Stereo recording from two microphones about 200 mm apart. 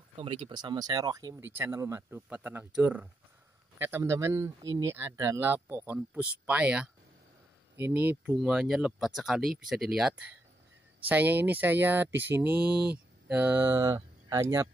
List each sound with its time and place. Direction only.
0.2 s speech: 25° right (ahead or behind)